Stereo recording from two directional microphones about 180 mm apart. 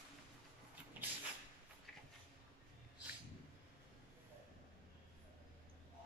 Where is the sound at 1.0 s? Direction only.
10° right (ahead or behind).